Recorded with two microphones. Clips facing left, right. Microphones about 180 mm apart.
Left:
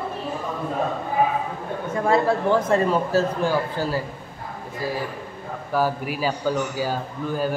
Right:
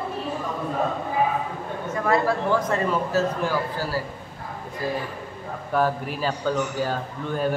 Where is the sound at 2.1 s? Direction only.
25° left (ahead or behind).